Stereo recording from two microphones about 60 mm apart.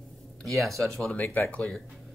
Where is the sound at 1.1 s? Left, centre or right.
Left.